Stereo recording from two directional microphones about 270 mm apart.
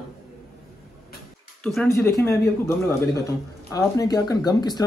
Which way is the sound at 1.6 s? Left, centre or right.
Centre.